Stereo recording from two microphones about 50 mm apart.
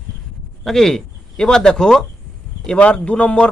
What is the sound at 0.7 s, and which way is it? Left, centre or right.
Speech, centre.